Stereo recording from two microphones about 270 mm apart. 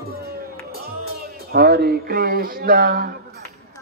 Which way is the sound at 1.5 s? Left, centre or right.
Right.